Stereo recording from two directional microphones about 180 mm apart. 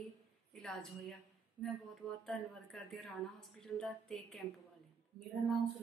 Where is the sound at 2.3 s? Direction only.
Centre (ahead or behind).